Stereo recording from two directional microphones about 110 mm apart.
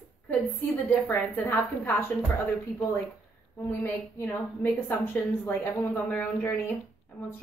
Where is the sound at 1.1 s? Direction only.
20° left (ahead or behind).